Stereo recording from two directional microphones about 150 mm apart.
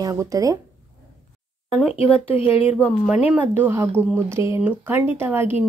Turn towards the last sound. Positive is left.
turn(degrees=-15)  # may be behind; listen again after turning